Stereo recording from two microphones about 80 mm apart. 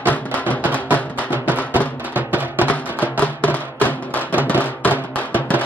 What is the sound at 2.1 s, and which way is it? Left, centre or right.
Music, right.